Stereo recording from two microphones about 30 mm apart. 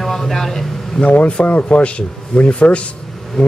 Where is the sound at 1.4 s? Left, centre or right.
Left.